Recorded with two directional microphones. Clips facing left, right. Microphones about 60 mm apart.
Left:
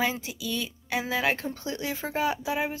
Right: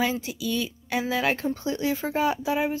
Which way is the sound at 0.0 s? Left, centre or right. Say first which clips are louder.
Right 2 dB; centre.